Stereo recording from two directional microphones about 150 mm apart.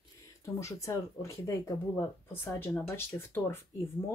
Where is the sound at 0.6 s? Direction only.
20° left (ahead or behind).